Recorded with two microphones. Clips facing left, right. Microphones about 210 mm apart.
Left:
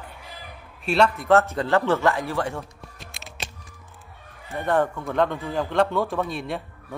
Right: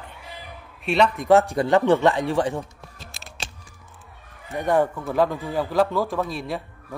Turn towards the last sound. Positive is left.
turn(degrees=0)  # may be behind; listen again after turning